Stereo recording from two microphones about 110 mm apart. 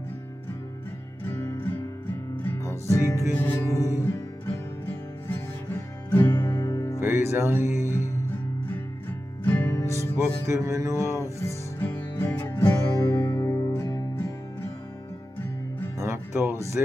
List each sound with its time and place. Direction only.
1.3 s music: 20° left (ahead or behind)
3.3 s music: 15° left (ahead or behind)
6.5 s music: 40° left (ahead or behind)
7.0 s music: 25° right (ahead or behind)
9.4 s music: 15° left (ahead or behind)
9.8 s music: 25° left (ahead or behind)
10.1 s music: 25° right (ahead or behind)
11.1 s music: 20° left (ahead or behind)
16.0 s music: 25° right (ahead or behind)
16.8 s speech: 15° right (ahead or behind)